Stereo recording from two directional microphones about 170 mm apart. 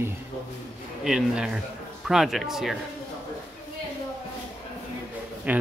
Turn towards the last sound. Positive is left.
turn(degrees=-10)  # may be behind; listen again after turning